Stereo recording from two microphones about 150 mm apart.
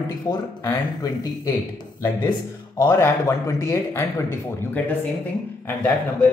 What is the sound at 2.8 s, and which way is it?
Speech, 20° left (ahead or behind).